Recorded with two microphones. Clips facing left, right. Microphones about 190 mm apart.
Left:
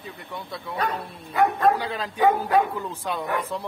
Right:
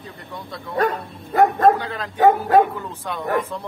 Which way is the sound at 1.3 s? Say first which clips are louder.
Right 5 dB; 45° right (ahead or behind).